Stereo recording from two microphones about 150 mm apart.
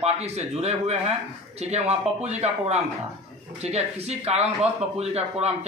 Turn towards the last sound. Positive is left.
turn(degrees=-45)  # may be behind; listen again after turning